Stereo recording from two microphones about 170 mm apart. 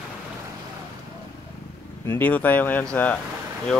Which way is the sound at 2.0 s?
10° left (ahead or behind).